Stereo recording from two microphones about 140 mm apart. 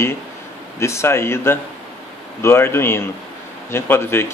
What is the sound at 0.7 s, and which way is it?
Speech, 20° left (ahead or behind).